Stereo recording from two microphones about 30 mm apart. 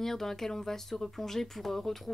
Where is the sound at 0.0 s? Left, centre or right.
Centre.